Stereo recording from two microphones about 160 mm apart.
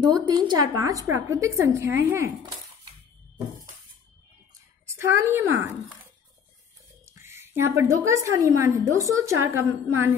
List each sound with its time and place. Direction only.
0.0 s a woman's voice: 25° right (ahead or behind)
4.8 s a woman's voice: 15° right (ahead or behind)
7.1 s a woman's voice: 15° right (ahead or behind)